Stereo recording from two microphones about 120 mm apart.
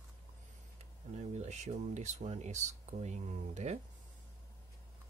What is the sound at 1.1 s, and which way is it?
Speech, 70° right (ahead or behind).